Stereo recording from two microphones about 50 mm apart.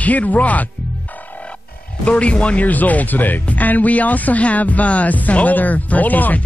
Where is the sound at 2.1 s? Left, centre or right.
Left.